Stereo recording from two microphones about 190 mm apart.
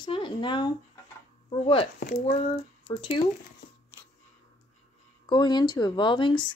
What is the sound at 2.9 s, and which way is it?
Speech, 25° left (ahead or behind).